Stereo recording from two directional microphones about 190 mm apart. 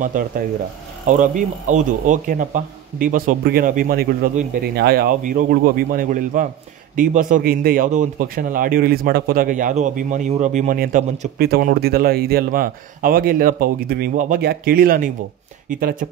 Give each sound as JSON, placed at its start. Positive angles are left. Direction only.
{"t": 0.1, "sound": "speech", "side_deg": -45}